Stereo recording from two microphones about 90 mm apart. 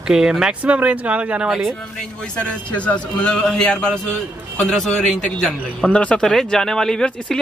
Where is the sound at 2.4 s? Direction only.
15° left (ahead or behind).